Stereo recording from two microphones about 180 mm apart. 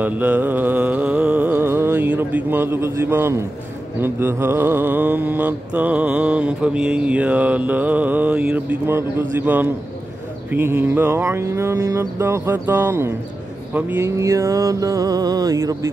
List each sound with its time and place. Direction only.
0.0 s music: 10° right (ahead or behind)
4.0 s mantra: 10° right (ahead or behind)
10.5 s mantra: 10° right (ahead or behind)